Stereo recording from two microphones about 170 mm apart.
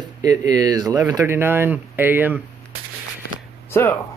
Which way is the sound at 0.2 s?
20° right (ahead or behind).